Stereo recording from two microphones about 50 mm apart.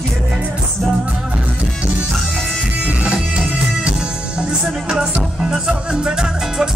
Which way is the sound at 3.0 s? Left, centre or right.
Centre.